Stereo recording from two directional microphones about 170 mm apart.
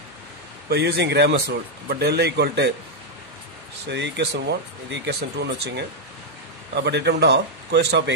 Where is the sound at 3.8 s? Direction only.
90° right.